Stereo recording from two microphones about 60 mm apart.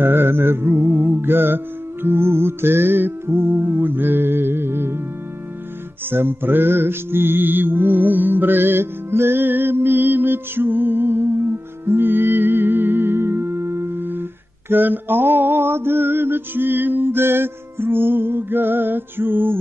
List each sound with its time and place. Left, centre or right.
0.0 s music: right
6.0 s music: right